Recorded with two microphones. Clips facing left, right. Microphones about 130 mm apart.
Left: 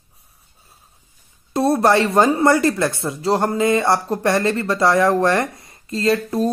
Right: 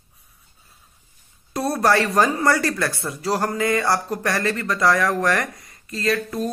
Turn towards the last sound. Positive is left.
turn(degrees=30)  # may be behind; listen again after turning